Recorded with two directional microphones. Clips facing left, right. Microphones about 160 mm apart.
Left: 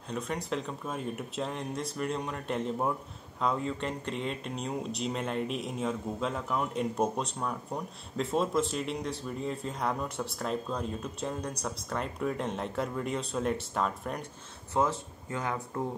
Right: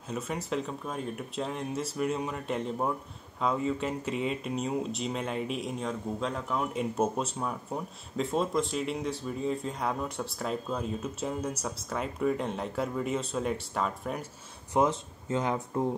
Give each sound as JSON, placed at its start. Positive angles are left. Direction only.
{"t": 0.1, "sound": "speech", "side_deg": -5}
{"t": 14.7, "sound": "speech", "side_deg": -20}